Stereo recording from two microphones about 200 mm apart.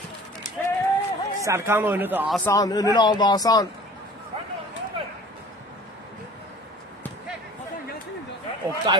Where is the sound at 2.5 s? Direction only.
20° left (ahead or behind).